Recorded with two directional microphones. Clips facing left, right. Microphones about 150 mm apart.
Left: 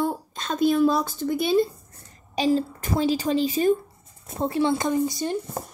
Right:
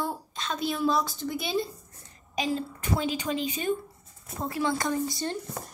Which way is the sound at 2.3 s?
35° left (ahead or behind).